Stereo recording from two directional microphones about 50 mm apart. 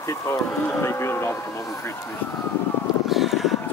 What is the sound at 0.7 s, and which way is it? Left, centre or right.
Speech, left.